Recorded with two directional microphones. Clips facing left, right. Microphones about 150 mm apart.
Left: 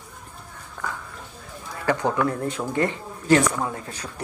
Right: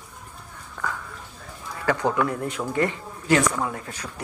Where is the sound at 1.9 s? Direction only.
30° left (ahead or behind).